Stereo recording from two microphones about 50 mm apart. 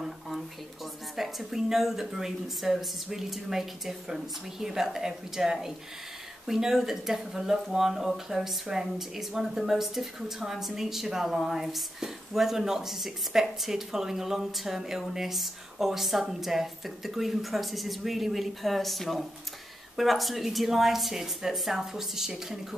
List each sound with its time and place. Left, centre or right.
1.1 s a woman's voice: centre